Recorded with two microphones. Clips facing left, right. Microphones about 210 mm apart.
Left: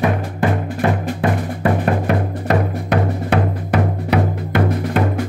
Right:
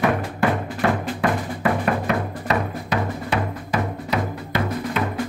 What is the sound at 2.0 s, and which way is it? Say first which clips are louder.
Music: left 4 dB; 55° left (ahead or behind).